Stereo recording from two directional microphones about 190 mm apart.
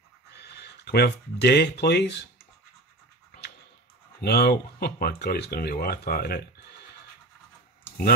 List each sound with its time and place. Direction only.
0.4 s speech: 60° left (ahead or behind)
4.2 s speech: 55° left (ahead or behind)